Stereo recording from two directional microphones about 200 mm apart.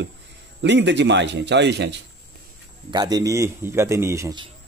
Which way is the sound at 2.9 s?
20° right (ahead or behind).